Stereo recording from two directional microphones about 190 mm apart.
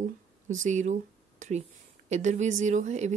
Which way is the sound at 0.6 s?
40° right (ahead or behind).